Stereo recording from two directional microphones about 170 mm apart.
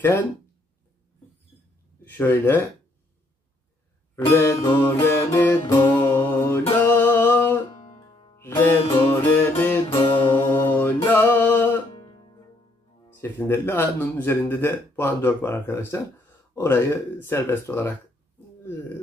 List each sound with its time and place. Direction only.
2.0 s speech: 10° left (ahead or behind)
4.3 s speech: 15° left (ahead or behind)
5.9 s music: 25° left (ahead or behind)
7.0 s a sound: 10° left (ahead or behind)
8.4 s music: 15° left (ahead or behind)
8.8 s music: 30° left (ahead or behind)
9.2 s music: 10° left (ahead or behind)
9.9 s music: 30° left (ahead or behind)
10.7 s music: 10° left (ahead or behind)
13.1 s speech: 15° left (ahead or behind)